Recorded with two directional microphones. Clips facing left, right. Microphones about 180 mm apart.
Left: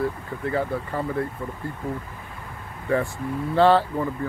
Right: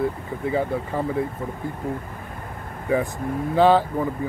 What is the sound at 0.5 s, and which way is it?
Speech, 15° right (ahead or behind).